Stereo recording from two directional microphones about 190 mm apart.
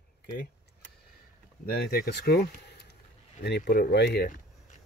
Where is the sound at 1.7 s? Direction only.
55° left (ahead or behind).